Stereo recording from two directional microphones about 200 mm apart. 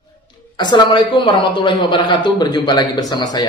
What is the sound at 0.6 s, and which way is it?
Speech, 20° left (ahead or behind).